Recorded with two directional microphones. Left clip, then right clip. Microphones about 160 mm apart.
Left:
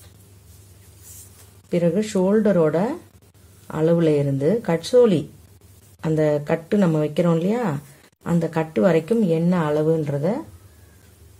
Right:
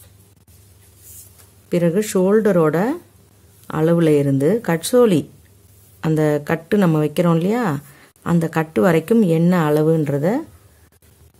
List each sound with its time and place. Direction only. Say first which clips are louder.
1.7 s speech: right 3 dB; 40° right (ahead or behind)